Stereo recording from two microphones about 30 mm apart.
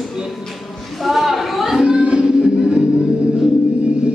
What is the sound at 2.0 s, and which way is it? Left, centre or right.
Music, right.